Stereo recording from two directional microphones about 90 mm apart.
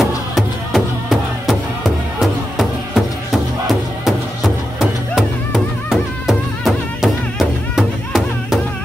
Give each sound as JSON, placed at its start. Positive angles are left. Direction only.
{"t": 0.0, "sound": "music", "side_deg": 0}
{"t": 2.1, "sound": "music", "side_deg": 0}